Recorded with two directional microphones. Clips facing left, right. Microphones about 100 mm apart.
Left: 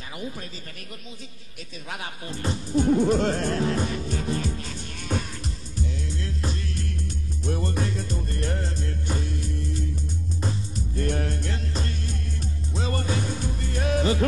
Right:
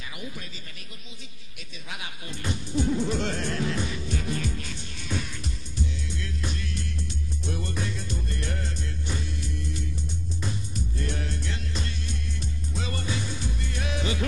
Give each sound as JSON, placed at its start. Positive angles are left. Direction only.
{"t": 1.9, "sound": "music", "side_deg": 40}